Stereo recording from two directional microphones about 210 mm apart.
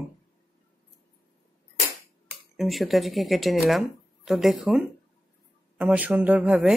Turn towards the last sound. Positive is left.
turn(degrees=-5)  # may be behind; listen again after turning